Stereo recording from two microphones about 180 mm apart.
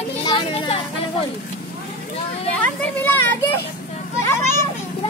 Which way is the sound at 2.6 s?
10° left (ahead or behind).